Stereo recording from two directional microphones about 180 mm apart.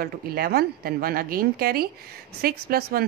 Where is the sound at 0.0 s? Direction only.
55° right (ahead or behind).